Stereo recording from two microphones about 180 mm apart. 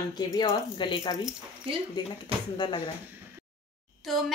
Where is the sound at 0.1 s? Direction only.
25° left (ahead or behind).